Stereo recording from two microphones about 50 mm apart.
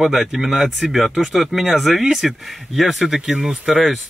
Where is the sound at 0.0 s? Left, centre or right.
Centre.